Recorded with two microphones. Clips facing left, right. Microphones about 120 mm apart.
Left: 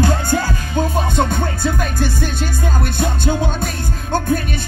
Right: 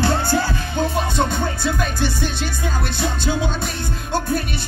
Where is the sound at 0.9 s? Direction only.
45° left (ahead or behind).